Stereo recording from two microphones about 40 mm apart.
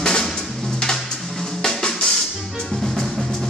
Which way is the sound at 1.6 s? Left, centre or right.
Centre.